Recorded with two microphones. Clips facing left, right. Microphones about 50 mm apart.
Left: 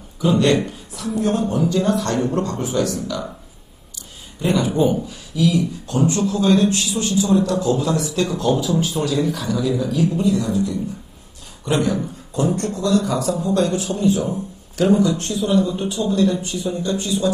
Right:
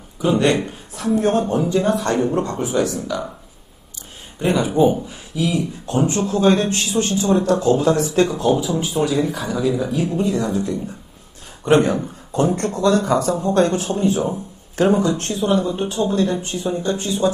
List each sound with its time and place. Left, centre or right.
0.2 s speech: right
0.7 s a woman's voice: right
1.7 s speech: right
4.5 s speech: centre
5.0 s speech: right
8.5 s speech: centre; by 17.3 s right